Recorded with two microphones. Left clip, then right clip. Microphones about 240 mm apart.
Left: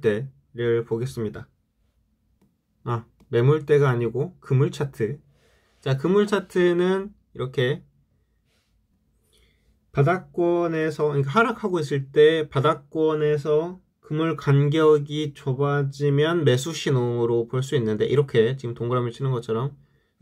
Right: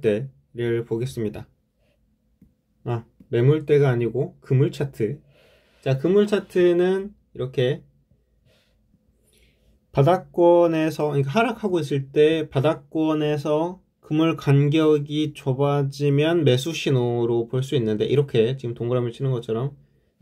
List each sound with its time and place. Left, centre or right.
0.0 s speech: centre
2.8 s speech: centre
10.7 s speech: centre